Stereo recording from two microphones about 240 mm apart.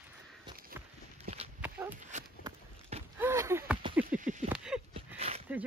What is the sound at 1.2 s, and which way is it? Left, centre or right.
Dog, right.